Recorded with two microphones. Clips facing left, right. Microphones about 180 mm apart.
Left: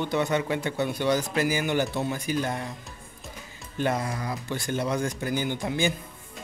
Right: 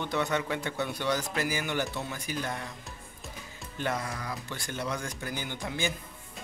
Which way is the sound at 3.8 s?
25° left (ahead or behind).